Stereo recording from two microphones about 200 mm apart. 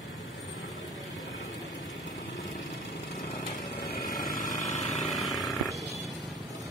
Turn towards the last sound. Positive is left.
turn(degrees=0)  # may be behind; listen again after turning